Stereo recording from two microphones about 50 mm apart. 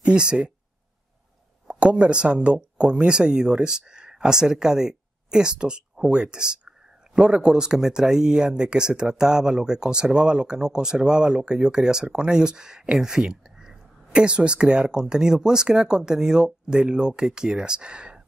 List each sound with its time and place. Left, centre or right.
0.0 s speech: centre
1.7 s speech: right